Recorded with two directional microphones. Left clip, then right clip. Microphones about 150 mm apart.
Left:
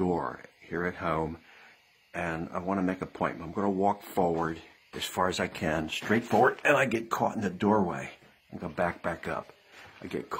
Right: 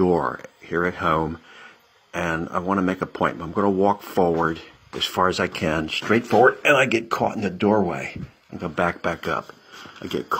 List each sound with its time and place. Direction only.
0.0 s speech: centre (ahead or behind)
8.5 s speech: centre (ahead or behind)